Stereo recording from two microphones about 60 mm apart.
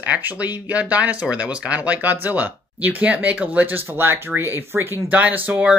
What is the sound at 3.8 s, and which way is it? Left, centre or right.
Speech, right.